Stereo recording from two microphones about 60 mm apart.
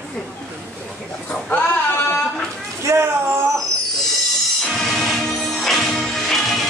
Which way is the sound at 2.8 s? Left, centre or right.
Right.